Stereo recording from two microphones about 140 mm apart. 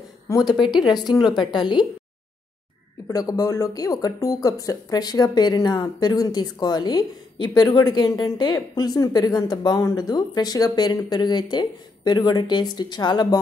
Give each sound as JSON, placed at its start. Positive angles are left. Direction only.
{"t": 0.3, "sound": "a woman's voice", "side_deg": 30}
{"t": 3.1, "sound": "speech", "side_deg": 25}